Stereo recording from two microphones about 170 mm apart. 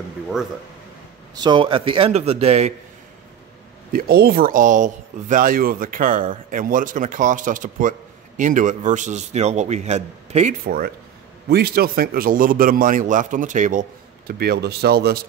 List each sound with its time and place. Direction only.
1.3 s a man's voice: 25° right (ahead or behind)
3.9 s speech: 65° right (ahead or behind); by 10.5 s 40° right (ahead or behind)
10.6 s a man's voice: 60° right (ahead or behind)